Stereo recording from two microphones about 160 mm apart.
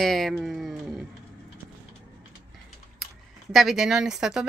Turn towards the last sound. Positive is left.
turn(degrees=-5)  # may be behind; listen again after turning